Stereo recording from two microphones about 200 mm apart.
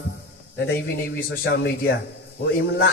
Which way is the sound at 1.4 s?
50° left (ahead or behind).